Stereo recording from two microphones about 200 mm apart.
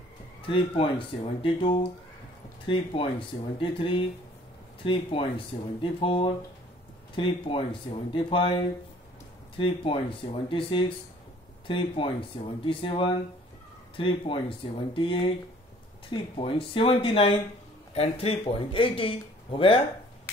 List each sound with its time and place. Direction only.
0.5 s speech: 25° left (ahead or behind)